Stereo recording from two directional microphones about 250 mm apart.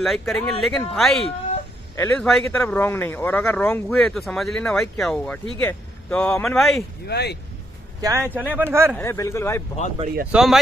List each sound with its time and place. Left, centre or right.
0.0 s speech: centre
7.1 s speech: left
8.0 s speech: centre
8.9 s speech: centre
9.9 s speech: right
10.3 s speech: centre